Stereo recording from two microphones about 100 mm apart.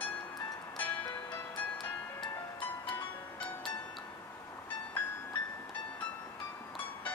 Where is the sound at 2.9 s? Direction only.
55° left (ahead or behind).